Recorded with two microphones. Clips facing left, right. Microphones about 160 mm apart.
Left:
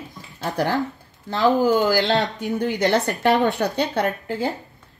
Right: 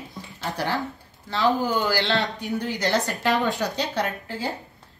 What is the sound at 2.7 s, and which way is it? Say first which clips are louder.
Speech: left 4 dB; 55° left (ahead or behind).